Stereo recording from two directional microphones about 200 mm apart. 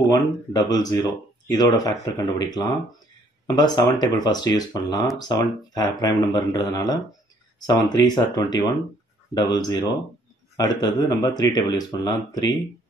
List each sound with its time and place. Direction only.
0.1 s speech: 20° left (ahead or behind)